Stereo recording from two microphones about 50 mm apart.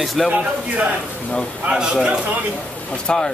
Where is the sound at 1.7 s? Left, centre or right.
Centre.